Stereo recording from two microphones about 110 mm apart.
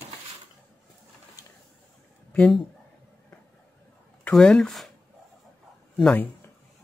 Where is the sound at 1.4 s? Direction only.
35° left (ahead or behind).